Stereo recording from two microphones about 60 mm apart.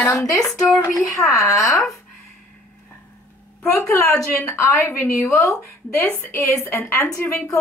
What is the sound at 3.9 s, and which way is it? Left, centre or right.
A woman's voice, left.